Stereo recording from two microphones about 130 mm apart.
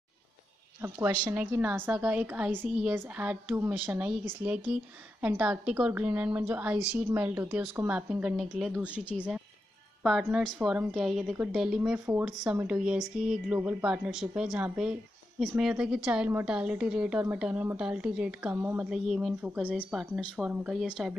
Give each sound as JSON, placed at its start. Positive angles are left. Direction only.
{"t": 0.7, "sound": "a woman's voice", "side_deg": -20}
{"t": 13.6, "sound": "speech", "side_deg": -20}
{"t": 13.8, "sound": "a woman's voice", "side_deg": -10}